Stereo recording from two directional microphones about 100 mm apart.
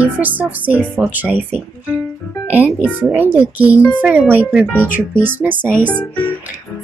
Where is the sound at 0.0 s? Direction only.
15° right (ahead or behind).